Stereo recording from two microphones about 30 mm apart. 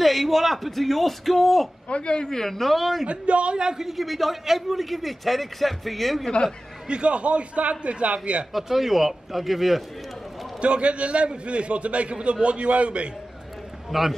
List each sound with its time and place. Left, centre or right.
0.0 s a man's voice: centre
1.9 s speech: left
2.2 s a woman's voice: centre
2.6 s a man's voice: centre
3.1 s a man's voice: right
3.5 s a man's voice: right
3.8 s a man's voice: centre
6.9 s a man's voice: right
8.5 s a man's voice: centre
10.6 s a man's voice: right
13.8 s a man's voice: centre